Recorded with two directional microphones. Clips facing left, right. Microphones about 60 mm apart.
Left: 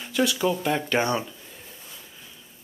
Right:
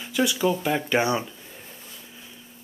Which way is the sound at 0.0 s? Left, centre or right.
Centre.